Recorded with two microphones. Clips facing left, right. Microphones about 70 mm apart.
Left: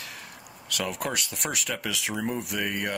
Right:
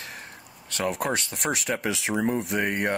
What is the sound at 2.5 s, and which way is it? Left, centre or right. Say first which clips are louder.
Speech: right 4 dB; right.